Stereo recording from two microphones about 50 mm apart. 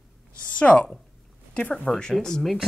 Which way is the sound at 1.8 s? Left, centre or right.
Centre.